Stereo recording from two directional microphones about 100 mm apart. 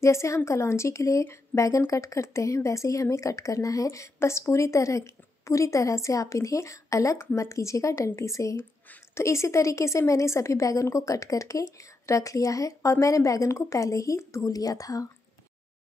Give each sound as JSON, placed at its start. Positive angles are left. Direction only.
{"t": 0.0, "sound": "speech", "side_deg": 30}